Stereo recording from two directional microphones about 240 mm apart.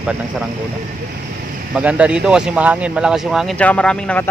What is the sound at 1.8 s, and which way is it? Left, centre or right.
Speech, centre.